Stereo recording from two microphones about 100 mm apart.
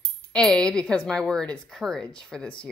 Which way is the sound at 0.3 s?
10° left (ahead or behind).